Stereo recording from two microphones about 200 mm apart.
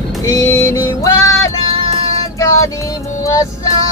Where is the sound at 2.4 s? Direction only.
15° left (ahead or behind).